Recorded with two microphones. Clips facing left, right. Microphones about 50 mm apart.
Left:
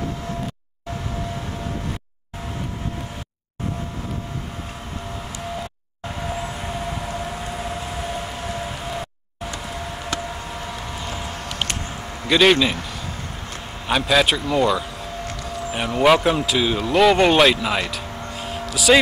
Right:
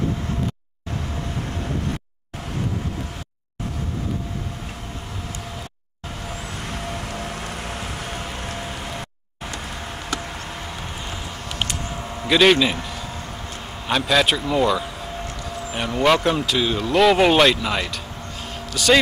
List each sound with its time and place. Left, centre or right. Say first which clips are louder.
7.2 s a sound: left 2 dB; right
12.3 s a man's voice: even; centre
13.8 s a man's voice: left 1 dB; centre